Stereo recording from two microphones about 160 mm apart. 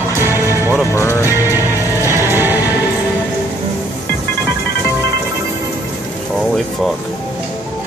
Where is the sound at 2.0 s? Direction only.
15° right (ahead or behind).